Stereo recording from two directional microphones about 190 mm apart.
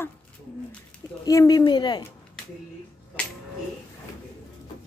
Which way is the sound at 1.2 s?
20° left (ahead or behind).